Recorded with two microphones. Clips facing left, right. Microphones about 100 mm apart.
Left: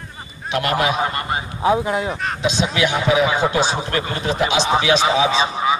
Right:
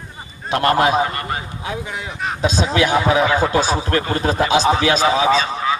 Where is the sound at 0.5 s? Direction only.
35° right (ahead or behind).